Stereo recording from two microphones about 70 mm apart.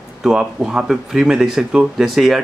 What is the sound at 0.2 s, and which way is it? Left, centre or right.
Speech, centre.